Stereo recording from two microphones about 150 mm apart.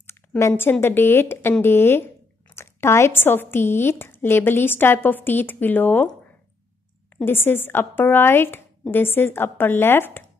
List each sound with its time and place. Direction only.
0.4 s speech: 15° left (ahead or behind)
7.2 s speech: 15° left (ahead or behind)